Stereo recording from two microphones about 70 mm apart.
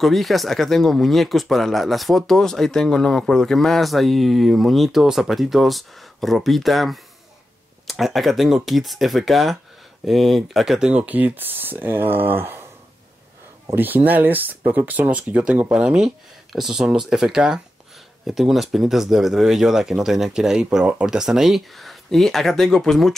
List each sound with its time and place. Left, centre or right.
0.0 s speech: centre
10.9 s speech: centre
13.7 s speech: right; by 23.1 s centre